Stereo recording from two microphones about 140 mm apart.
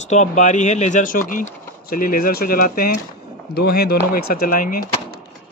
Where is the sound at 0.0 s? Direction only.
55° left (ahead or behind); by 4.8 s 90° left.